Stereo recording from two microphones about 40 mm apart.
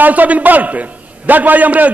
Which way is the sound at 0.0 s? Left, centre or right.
Right.